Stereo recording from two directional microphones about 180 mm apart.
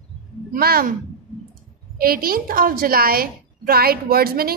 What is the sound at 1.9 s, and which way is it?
A woman's voice, 55° right (ahead or behind).